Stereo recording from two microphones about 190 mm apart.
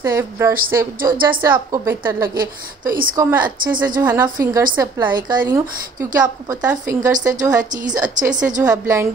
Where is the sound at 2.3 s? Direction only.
45° right (ahead or behind).